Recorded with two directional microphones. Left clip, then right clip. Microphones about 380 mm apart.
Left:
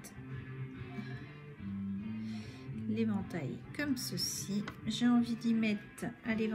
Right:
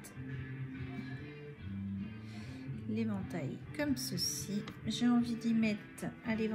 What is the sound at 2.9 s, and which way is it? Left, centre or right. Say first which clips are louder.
A woman's voice: left 2 dB; centre.